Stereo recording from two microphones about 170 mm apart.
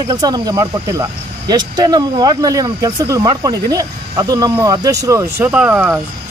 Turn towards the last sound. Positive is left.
turn(degrees=-10)  # may be behind; listen again after turning